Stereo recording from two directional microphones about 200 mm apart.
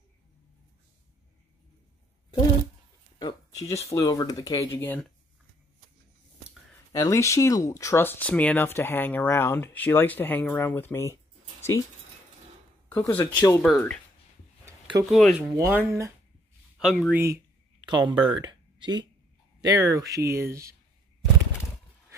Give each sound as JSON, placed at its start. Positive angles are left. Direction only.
{"t": 3.2, "sound": "a sound", "side_deg": 20}
{"t": 3.9, "sound": "speech", "side_deg": 15}
{"t": 6.9, "sound": "speech", "side_deg": 15}
{"t": 12.9, "sound": "speech", "side_deg": 10}
{"t": 14.7, "sound": "a sound", "side_deg": -15}
{"t": 15.0, "sound": "speech", "side_deg": 0}
{"t": 15.5, "sound": "speech", "side_deg": -15}
{"t": 16.7, "sound": "speech", "side_deg": 0}
{"t": 17.8, "sound": "speech", "side_deg": -20}